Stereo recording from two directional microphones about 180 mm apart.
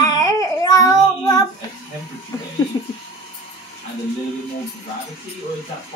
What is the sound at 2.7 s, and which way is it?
Music, 20° left (ahead or behind).